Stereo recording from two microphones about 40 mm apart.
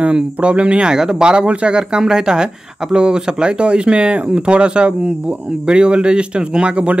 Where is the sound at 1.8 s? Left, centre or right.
Centre; by 7.0 s right.